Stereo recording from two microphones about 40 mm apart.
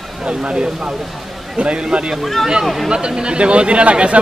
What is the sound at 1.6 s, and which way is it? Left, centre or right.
A man's voice, right.